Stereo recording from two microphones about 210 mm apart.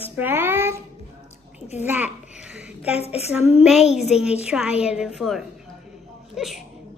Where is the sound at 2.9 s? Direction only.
30° left (ahead or behind).